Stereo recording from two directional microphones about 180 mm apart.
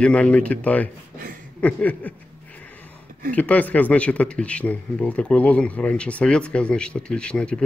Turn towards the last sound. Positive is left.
turn(degrees=5)  # may be behind; listen again after turning